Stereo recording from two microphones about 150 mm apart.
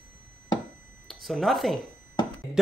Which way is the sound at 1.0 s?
Centre (ahead or behind).